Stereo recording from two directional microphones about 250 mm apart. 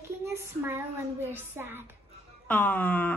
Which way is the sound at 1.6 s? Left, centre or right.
Centre.